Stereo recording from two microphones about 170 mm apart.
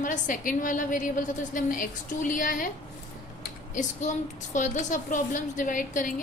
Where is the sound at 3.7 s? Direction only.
45° left (ahead or behind).